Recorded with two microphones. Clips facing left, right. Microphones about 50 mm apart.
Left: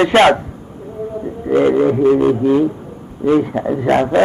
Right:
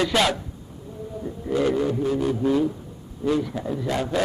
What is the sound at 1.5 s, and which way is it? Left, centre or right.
Speech, left.